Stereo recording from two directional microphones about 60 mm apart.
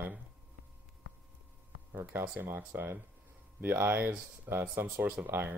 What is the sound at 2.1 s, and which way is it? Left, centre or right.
Speech, right.